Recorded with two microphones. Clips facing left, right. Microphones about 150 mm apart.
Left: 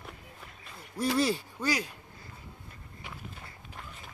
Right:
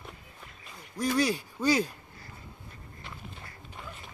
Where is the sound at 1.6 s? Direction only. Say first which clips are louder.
Right 8 dB; 25° right (ahead or behind).